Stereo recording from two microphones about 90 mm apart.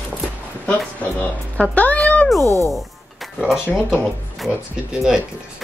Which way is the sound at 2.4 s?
35° right (ahead or behind).